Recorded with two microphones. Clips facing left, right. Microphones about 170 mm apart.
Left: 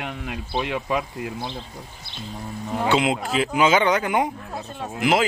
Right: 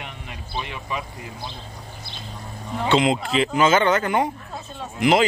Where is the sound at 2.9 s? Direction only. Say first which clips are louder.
Right 2 dB; 5° left (ahead or behind).